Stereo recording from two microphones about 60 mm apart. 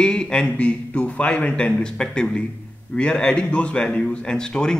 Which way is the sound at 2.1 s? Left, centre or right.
Centre.